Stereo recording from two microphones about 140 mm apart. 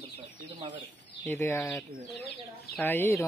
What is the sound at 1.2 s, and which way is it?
Speech, 20° left (ahead or behind).